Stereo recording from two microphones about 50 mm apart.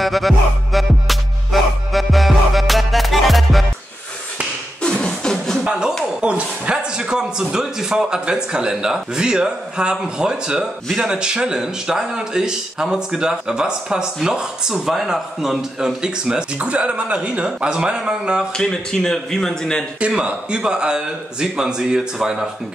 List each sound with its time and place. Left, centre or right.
0.0 s music: centre
4.8 s beatboxing: centre
5.6 s music: centre
6.2 s a man's voice: right
18.6 s speech: centre
20.1 s a man's voice: centre